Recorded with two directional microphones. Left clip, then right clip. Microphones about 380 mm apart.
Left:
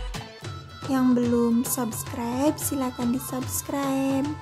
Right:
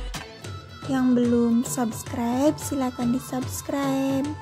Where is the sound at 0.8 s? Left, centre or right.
Centre.